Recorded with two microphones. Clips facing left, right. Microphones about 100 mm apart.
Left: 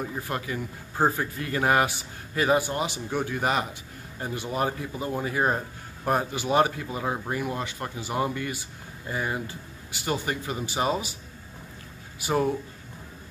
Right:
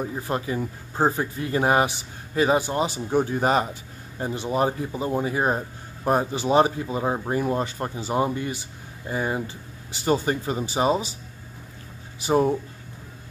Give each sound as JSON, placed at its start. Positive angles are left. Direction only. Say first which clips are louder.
{"t": 0.1, "sound": "speech", "louder": "right 4 dB", "side_deg": -25}
{"t": 12.2, "sound": "speech", "louder": "right 4 dB", "side_deg": -25}